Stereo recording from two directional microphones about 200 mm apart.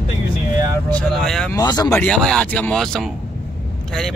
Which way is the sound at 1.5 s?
20° left (ahead or behind).